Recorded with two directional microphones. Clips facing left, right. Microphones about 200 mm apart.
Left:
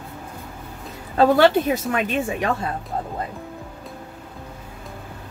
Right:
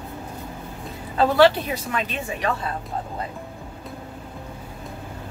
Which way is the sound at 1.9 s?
50° left (ahead or behind).